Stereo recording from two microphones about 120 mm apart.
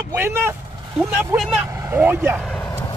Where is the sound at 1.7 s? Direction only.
20° right (ahead or behind).